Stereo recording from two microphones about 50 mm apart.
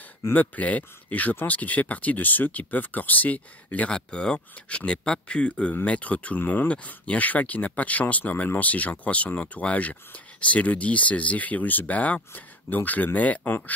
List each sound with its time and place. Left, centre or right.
0.3 s speech: left
3.9 s speech: centre; by 6.7 s left
6.7 s speech: left